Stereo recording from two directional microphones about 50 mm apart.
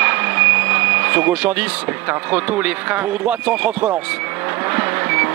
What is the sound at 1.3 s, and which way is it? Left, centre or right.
Speech, right.